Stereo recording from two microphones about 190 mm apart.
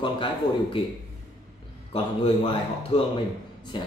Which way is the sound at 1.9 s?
30° left (ahead or behind).